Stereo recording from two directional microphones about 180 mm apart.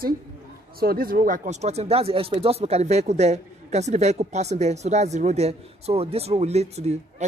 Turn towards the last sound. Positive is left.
turn(degrees=-35)  # may be behind; listen again after turning